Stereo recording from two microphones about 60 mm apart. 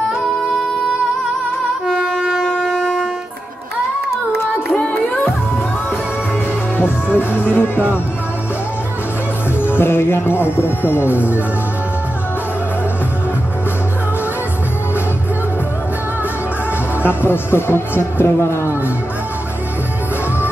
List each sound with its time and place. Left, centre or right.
2.3 s shofar: centre
4.7 s music: left
7.1 s speech: left
9.6 s speech: left
17.0 s speech: left